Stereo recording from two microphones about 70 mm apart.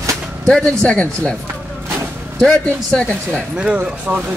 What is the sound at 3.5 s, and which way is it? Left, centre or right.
Speech, centre.